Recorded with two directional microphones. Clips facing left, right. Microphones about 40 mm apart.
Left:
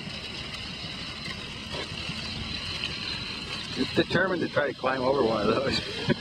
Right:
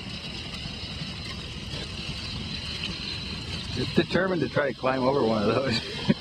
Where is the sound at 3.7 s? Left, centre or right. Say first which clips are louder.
Even; centre.